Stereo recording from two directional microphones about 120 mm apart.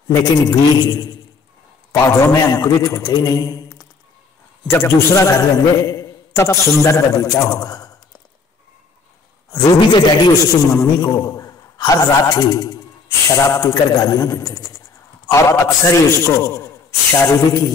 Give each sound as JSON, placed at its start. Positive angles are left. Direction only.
{"t": 0.1, "sound": "a man's voice", "side_deg": 30}
{"t": 9.5, "sound": "a man's voice", "side_deg": 40}